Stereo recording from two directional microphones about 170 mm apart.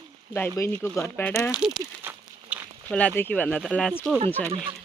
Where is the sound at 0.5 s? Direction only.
10° left (ahead or behind).